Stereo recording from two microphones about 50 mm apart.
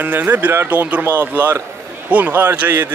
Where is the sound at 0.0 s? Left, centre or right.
Right.